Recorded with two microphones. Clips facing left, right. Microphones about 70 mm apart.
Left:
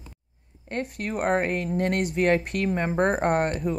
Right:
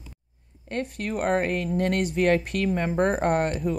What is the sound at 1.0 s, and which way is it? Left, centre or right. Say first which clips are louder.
Speech: even; left.